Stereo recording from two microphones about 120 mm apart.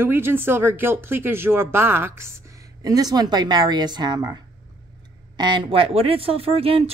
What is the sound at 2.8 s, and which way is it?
Speech, 30° right (ahead or behind).